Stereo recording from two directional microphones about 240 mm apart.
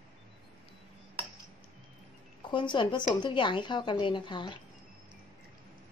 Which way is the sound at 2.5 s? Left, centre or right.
Centre.